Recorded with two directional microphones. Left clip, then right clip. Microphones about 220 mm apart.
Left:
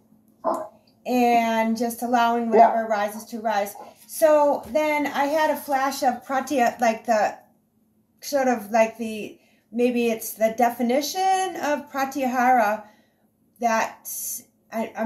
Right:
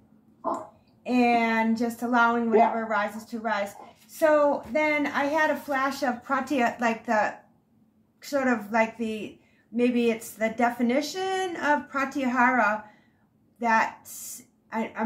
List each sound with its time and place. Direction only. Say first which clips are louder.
0.4 s dog: left 5 dB; 25° left (ahead or behind)
1.0 s a woman's voice: left 3 dB; centre (ahead or behind)